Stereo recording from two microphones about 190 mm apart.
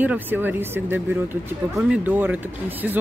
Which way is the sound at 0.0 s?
10° right (ahead or behind).